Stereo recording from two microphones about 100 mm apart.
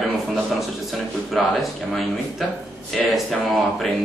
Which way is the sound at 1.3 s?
Centre (ahead or behind).